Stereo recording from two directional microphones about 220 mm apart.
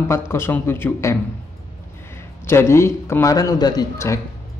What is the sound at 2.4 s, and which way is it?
A man's voice, 10° left (ahead or behind).